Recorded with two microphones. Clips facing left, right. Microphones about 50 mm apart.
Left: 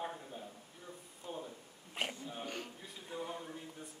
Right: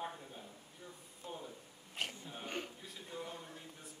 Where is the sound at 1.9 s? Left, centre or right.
Left.